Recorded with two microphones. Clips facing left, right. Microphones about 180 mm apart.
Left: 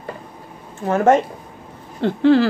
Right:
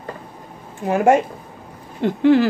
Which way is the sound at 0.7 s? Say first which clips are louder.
Even; 15° right (ahead or behind).